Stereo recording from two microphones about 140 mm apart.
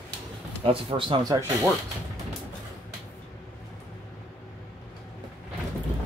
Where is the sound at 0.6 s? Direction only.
40° right (ahead or behind).